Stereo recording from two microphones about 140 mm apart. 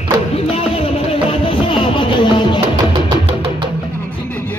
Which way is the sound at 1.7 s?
35° left (ahead or behind).